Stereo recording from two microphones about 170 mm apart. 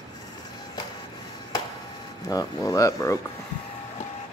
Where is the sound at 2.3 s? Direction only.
20° left (ahead or behind).